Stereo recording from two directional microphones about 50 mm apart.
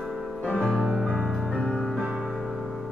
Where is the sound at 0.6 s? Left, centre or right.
Centre.